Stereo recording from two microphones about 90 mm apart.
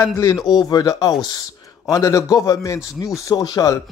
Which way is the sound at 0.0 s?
40° left (ahead or behind).